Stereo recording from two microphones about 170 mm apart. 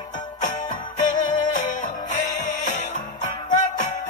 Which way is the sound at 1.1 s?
45° left (ahead or behind).